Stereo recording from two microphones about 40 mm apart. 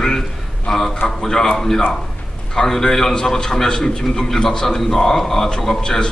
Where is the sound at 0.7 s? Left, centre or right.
Centre.